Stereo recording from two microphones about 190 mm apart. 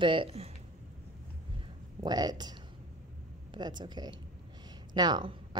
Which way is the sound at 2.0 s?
20° right (ahead or behind).